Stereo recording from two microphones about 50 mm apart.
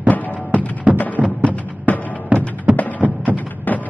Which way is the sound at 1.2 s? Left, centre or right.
Right.